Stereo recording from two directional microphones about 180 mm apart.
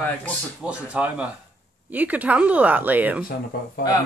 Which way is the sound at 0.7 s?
5° right (ahead or behind).